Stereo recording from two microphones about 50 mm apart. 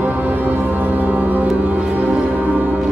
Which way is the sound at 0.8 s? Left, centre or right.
Right.